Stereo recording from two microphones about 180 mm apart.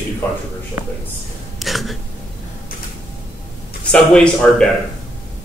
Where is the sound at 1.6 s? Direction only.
Centre (ahead or behind).